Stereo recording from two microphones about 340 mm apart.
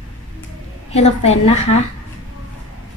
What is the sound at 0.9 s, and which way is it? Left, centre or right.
Speech, centre.